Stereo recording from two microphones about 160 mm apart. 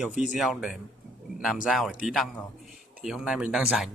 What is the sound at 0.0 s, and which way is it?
Speech, 5° right (ahead or behind).